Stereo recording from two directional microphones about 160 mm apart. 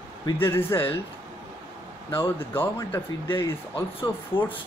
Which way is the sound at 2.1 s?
15° left (ahead or behind).